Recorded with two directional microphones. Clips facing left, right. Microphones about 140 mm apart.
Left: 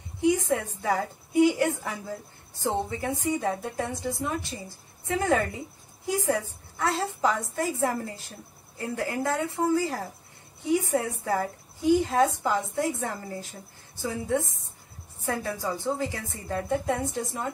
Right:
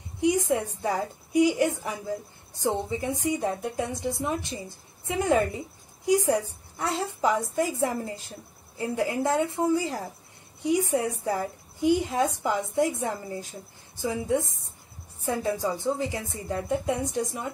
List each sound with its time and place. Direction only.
0.2 s a woman's voice: 15° right (ahead or behind)